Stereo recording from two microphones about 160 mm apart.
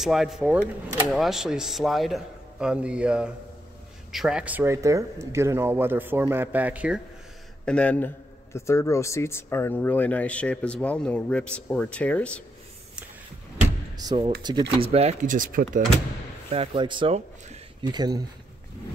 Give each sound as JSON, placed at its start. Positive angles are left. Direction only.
{"t": 0.0, "sound": "a man's voice", "side_deg": 0}
{"t": 7.6, "sound": "speech", "side_deg": 5}
{"t": 13.9, "sound": "speech", "side_deg": -25}
{"t": 14.8, "sound": "speech", "side_deg": -40}
{"t": 15.2, "sound": "speech", "side_deg": -60}
{"t": 16.4, "sound": "speech", "side_deg": -35}